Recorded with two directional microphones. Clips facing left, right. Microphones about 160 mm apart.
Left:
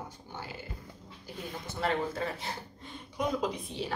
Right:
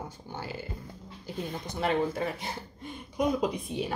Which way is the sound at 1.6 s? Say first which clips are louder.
Right 3 dB; 15° right (ahead or behind).